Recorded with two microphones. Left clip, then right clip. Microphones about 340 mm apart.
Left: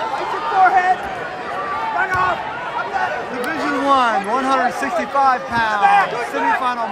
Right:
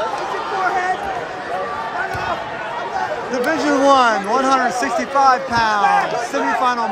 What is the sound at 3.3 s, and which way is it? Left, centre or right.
A man's voice, centre.